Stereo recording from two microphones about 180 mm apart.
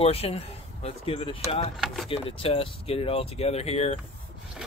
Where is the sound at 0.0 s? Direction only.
35° left (ahead or behind).